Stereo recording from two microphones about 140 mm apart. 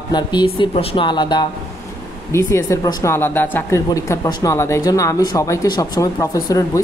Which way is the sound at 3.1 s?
15° left (ahead or behind).